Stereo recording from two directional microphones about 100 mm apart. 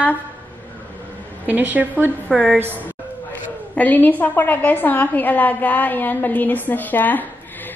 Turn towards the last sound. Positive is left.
turn(degrees=20)  # may be behind; listen again after turning